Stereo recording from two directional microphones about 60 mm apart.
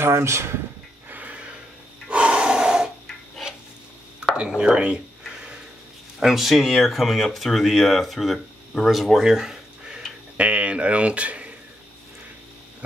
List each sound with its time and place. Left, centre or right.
0.0 s speech: right
1.1 s a sound: right
2.0 s breathing: centre
4.2 s a sound: centre
6.1 s speech: centre
10.3 s speech: right